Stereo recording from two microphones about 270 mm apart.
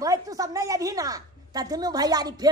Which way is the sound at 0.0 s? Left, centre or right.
Centre.